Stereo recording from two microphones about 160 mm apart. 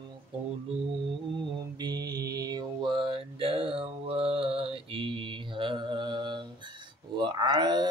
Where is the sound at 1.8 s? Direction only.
25° right (ahead or behind).